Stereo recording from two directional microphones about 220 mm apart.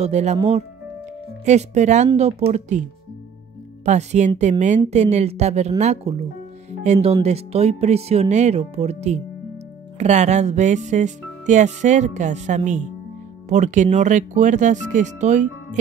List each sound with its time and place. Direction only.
0.0 s music: 30° right (ahead or behind)
0.4 s speech: 30° right (ahead or behind)
1.4 s music: 30° right (ahead or behind)
2.4 s speech: 30° right (ahead or behind)
3.8 s music: 30° right (ahead or behind)
4.4 s speech: 30° right (ahead or behind)
9.9 s music: 30° right (ahead or behind)